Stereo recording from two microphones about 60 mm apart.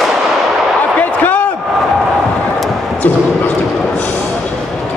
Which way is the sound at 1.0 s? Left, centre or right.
Left.